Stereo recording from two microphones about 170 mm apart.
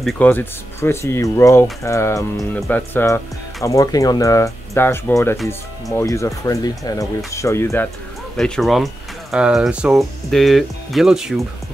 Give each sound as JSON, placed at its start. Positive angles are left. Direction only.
{"t": 0.0, "sound": "speech", "side_deg": 10}
{"t": 8.4, "sound": "speech", "side_deg": 0}